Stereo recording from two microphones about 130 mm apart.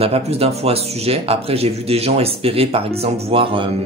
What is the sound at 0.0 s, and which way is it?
Speech, 50° right (ahead or behind).